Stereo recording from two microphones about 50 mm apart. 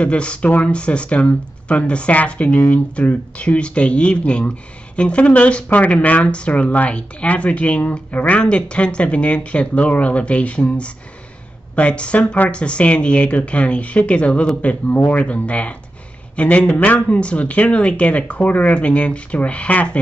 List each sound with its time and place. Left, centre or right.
0.0 s speech: left